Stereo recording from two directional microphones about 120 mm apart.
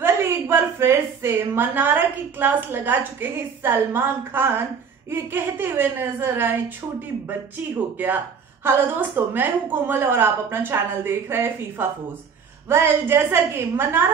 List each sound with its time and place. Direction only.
0.0 s a woman's voice: 20° right (ahead or behind)